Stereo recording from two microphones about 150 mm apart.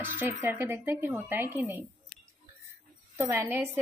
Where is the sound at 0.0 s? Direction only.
15° right (ahead or behind).